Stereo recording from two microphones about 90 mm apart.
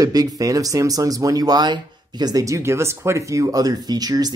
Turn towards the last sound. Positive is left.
turn(degrees=-45)  # may be behind; listen again after turning